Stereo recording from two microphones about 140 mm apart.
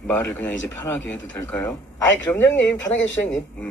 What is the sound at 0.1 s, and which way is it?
Speech, 15° left (ahead or behind).